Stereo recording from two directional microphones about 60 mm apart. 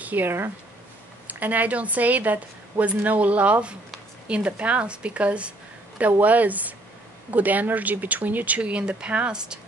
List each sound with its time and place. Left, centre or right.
0.0 s a woman's voice: right; by 9.6 s centre